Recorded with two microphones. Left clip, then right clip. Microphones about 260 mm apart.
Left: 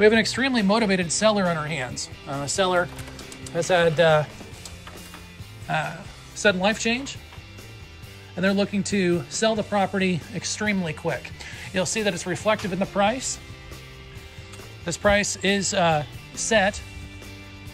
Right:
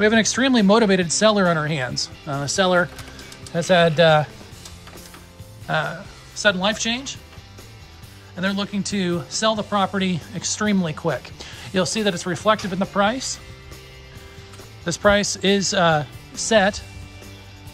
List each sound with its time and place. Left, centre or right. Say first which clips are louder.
0.0 s speech: right 1 dB; centre
5.7 s speech: right 3 dB; centre
8.4 s speech: left 2 dB; centre
14.9 s speech: right 3 dB; centre